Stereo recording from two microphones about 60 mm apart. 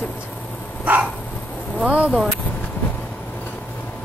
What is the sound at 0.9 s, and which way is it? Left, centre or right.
Speech, right.